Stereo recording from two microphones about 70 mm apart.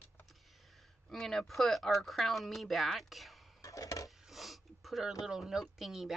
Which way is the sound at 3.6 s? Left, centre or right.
Left.